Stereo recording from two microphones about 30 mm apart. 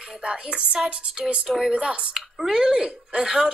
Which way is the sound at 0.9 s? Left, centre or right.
Right.